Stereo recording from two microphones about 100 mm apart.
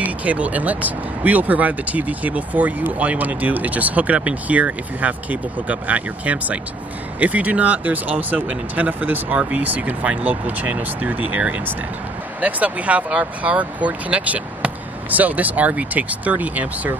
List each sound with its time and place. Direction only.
0.0 s speech: 15° right (ahead or behind)